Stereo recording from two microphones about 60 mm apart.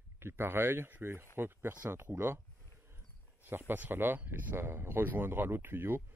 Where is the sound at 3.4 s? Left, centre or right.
Right.